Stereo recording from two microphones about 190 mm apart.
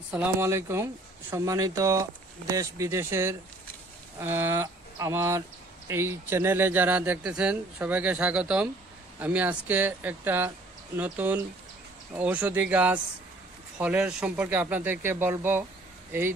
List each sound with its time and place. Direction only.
0.1 s speech: 10° right (ahead or behind)